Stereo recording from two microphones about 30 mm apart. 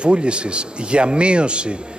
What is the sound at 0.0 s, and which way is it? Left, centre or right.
A man's voice, right.